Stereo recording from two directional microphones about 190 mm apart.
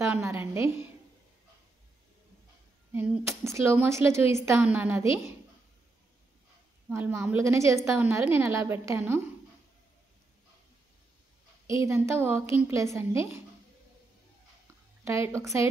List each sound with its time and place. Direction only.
0.0 s a sound: 15° right (ahead or behind)
2.9 s a woman's voice: 15° right (ahead or behind)
6.9 s a woman's voice: 15° right (ahead or behind)
11.6 s a woman's voice: 15° right (ahead or behind)
15.0 s a woman's voice: 15° right (ahead or behind)